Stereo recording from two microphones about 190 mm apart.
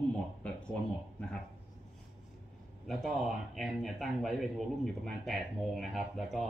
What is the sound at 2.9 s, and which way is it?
Speech, centre (ahead or behind).